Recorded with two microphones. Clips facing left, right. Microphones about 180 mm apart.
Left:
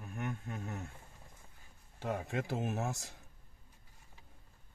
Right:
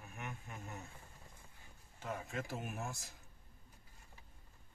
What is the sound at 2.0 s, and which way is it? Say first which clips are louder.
Speech: left 6 dB; 70° left (ahead or behind).